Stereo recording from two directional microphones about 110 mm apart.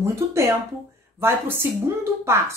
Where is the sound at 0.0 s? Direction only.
25° right (ahead or behind).